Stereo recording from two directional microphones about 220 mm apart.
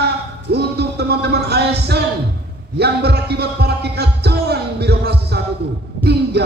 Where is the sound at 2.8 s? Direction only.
50° right (ahead or behind).